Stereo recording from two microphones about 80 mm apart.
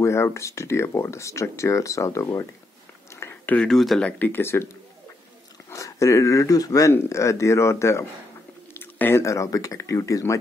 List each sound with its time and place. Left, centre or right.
0.0 s speech: left
3.1 s a sound: left
3.4 s speech: centre
3.7 s speech: centre
4.0 s speech: left
5.7 s speech: left
8.7 s chewing: left
9.2 s speech: left